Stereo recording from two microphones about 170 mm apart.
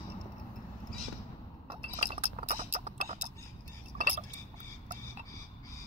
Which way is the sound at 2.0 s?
40° right (ahead or behind).